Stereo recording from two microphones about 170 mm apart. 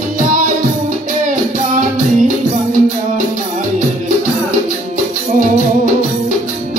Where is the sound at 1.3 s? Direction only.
50° right (ahead or behind).